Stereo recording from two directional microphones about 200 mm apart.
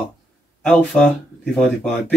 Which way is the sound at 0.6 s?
5° left (ahead or behind).